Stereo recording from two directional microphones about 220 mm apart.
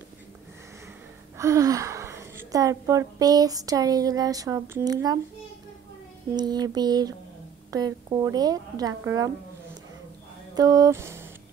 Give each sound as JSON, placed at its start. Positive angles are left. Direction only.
{"t": 1.4, "sound": "a woman's voice", "side_deg": -15}
{"t": 6.3, "sound": "mantra", "side_deg": -20}
{"t": 7.7, "sound": "a woman's voice", "side_deg": -15}
{"t": 10.5, "sound": "a sound", "side_deg": -15}